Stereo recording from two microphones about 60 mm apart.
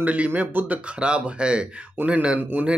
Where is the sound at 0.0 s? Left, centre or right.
Right.